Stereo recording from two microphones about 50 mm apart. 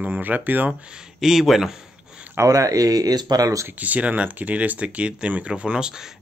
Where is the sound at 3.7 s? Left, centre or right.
Right.